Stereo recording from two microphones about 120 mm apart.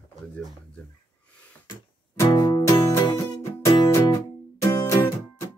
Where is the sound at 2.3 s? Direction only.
40° left (ahead or behind).